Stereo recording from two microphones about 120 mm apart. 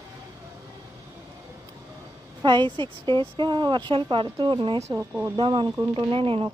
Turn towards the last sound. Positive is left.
turn(degrees=-45)  # may be behind; listen again after turning